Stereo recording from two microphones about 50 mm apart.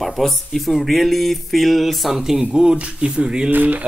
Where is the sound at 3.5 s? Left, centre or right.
Right.